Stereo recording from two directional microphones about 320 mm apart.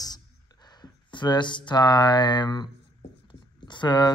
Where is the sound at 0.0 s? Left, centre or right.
Centre.